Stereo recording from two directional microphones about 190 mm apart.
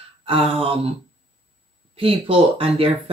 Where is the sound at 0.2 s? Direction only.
30° right (ahead or behind).